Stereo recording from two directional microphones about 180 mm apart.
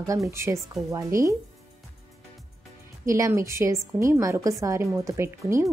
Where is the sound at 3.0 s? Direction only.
15° right (ahead or behind).